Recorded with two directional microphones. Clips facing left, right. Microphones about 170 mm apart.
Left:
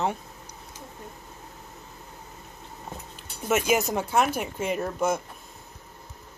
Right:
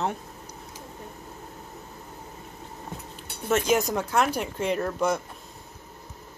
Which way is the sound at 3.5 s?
5° left (ahead or behind).